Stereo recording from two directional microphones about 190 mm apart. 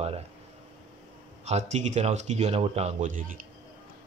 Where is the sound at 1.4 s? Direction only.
35° right (ahead or behind).